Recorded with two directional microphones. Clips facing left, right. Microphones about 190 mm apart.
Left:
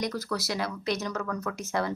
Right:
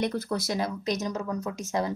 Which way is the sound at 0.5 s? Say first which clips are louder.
Even; 20° right (ahead or behind).